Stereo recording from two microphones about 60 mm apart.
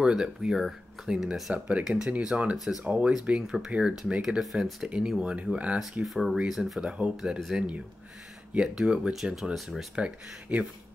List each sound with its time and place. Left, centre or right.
0.0 s speech: centre
1.5 s speech: right
1.9 s speech: centre
2.2 s speech: centre
2.5 s speech: centre
6.0 s speech: centre
6.8 s speech: centre
9.9 s speech: centre